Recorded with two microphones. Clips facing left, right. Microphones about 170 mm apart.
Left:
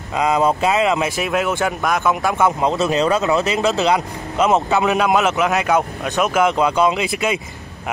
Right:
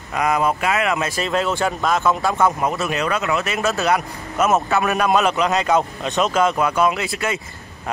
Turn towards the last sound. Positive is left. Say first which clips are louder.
# left 3 dB
turn(degrees=15)  # may be behind; listen again after turning